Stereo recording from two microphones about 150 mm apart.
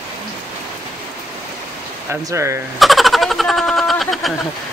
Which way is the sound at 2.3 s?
20° right (ahead or behind).